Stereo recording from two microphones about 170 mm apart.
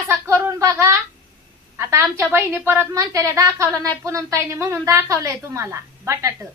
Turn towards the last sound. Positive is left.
turn(degrees=-20)  # may be behind; listen again after turning